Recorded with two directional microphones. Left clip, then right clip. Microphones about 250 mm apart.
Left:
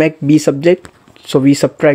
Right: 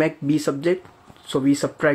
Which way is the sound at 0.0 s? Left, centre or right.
Left.